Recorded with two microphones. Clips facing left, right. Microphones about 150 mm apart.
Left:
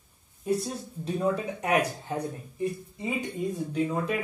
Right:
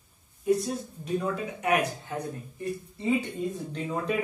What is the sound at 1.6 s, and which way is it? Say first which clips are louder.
Speech: even; 30° left (ahead or behind).